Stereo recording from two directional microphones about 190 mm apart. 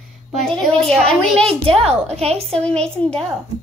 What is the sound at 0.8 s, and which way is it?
Speech, 5° left (ahead or behind).